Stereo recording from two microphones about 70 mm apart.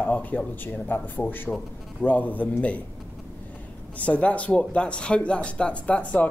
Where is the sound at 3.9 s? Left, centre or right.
Centre.